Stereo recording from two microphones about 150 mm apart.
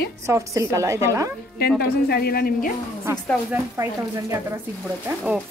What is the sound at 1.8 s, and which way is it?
Speech, 90° left.